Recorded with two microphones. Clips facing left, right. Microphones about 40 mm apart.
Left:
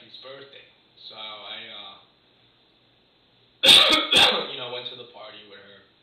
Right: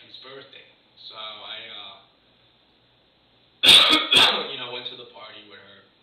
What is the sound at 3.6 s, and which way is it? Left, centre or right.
Cough, centre.